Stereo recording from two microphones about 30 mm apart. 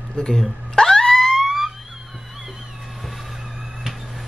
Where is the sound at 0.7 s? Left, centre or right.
Centre.